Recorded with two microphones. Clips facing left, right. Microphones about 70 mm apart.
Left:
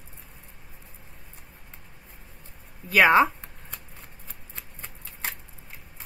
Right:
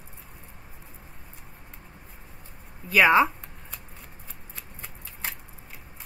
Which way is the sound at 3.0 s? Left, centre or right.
Centre.